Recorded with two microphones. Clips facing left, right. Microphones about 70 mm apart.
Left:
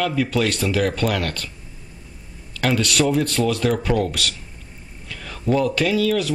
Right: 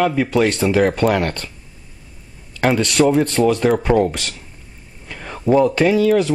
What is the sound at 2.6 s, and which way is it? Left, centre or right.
Speech, right.